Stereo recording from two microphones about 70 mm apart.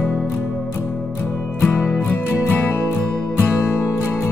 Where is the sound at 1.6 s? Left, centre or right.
Left.